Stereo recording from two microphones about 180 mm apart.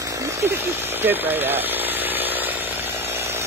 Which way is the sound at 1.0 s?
10° right (ahead or behind).